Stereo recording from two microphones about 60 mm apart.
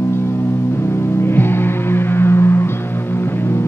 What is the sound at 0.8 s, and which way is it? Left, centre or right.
Music, left.